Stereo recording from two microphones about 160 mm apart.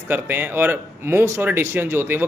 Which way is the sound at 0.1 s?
10° right (ahead or behind).